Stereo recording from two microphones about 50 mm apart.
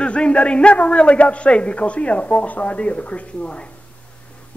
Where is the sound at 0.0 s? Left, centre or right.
Left.